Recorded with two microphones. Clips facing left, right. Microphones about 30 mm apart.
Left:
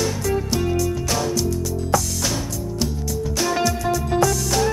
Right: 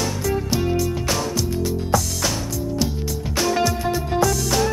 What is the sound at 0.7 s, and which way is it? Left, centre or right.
Music, centre.